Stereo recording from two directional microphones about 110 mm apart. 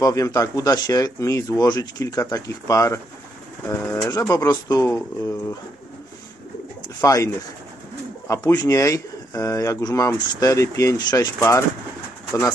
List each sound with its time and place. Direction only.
0.0 s speech: 30° left (ahead or behind)
7.0 s speech: 30° left (ahead or behind)
8.3 s speech: 25° left (ahead or behind)